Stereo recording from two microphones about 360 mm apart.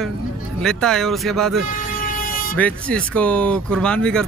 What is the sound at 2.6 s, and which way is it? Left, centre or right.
Speech, centre.